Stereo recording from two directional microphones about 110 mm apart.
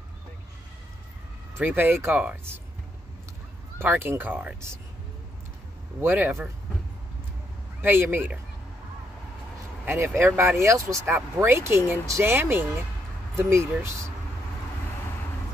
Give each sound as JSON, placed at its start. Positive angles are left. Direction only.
{"t": 1.6, "sound": "speech", "side_deg": -15}
{"t": 3.7, "sound": "speech", "side_deg": -20}
{"t": 5.9, "sound": "speech", "side_deg": -15}
{"t": 7.8, "sound": "speech", "side_deg": -20}
{"t": 9.8, "sound": "speech", "side_deg": -20}